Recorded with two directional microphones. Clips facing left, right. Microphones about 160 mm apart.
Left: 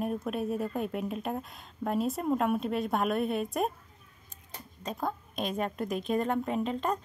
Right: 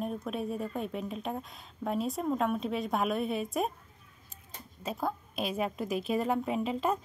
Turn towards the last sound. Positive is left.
turn(degrees=-5)  # may be behind; listen again after turning